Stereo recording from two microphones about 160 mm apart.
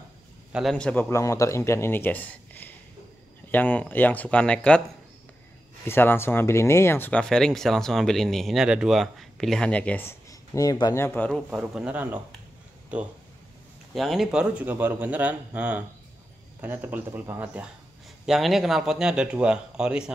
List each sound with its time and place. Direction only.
0.5 s speech: centre (ahead or behind)
1.1 s speech: 20° left (ahead or behind)
5.9 s speech: 15° left (ahead or behind); by 20.1 s 5° right (ahead or behind)